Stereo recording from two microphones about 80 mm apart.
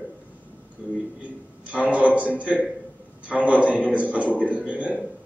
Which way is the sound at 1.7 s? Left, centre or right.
Centre.